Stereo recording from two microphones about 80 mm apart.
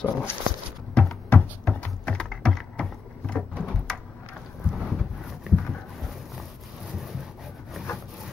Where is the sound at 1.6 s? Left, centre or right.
Centre.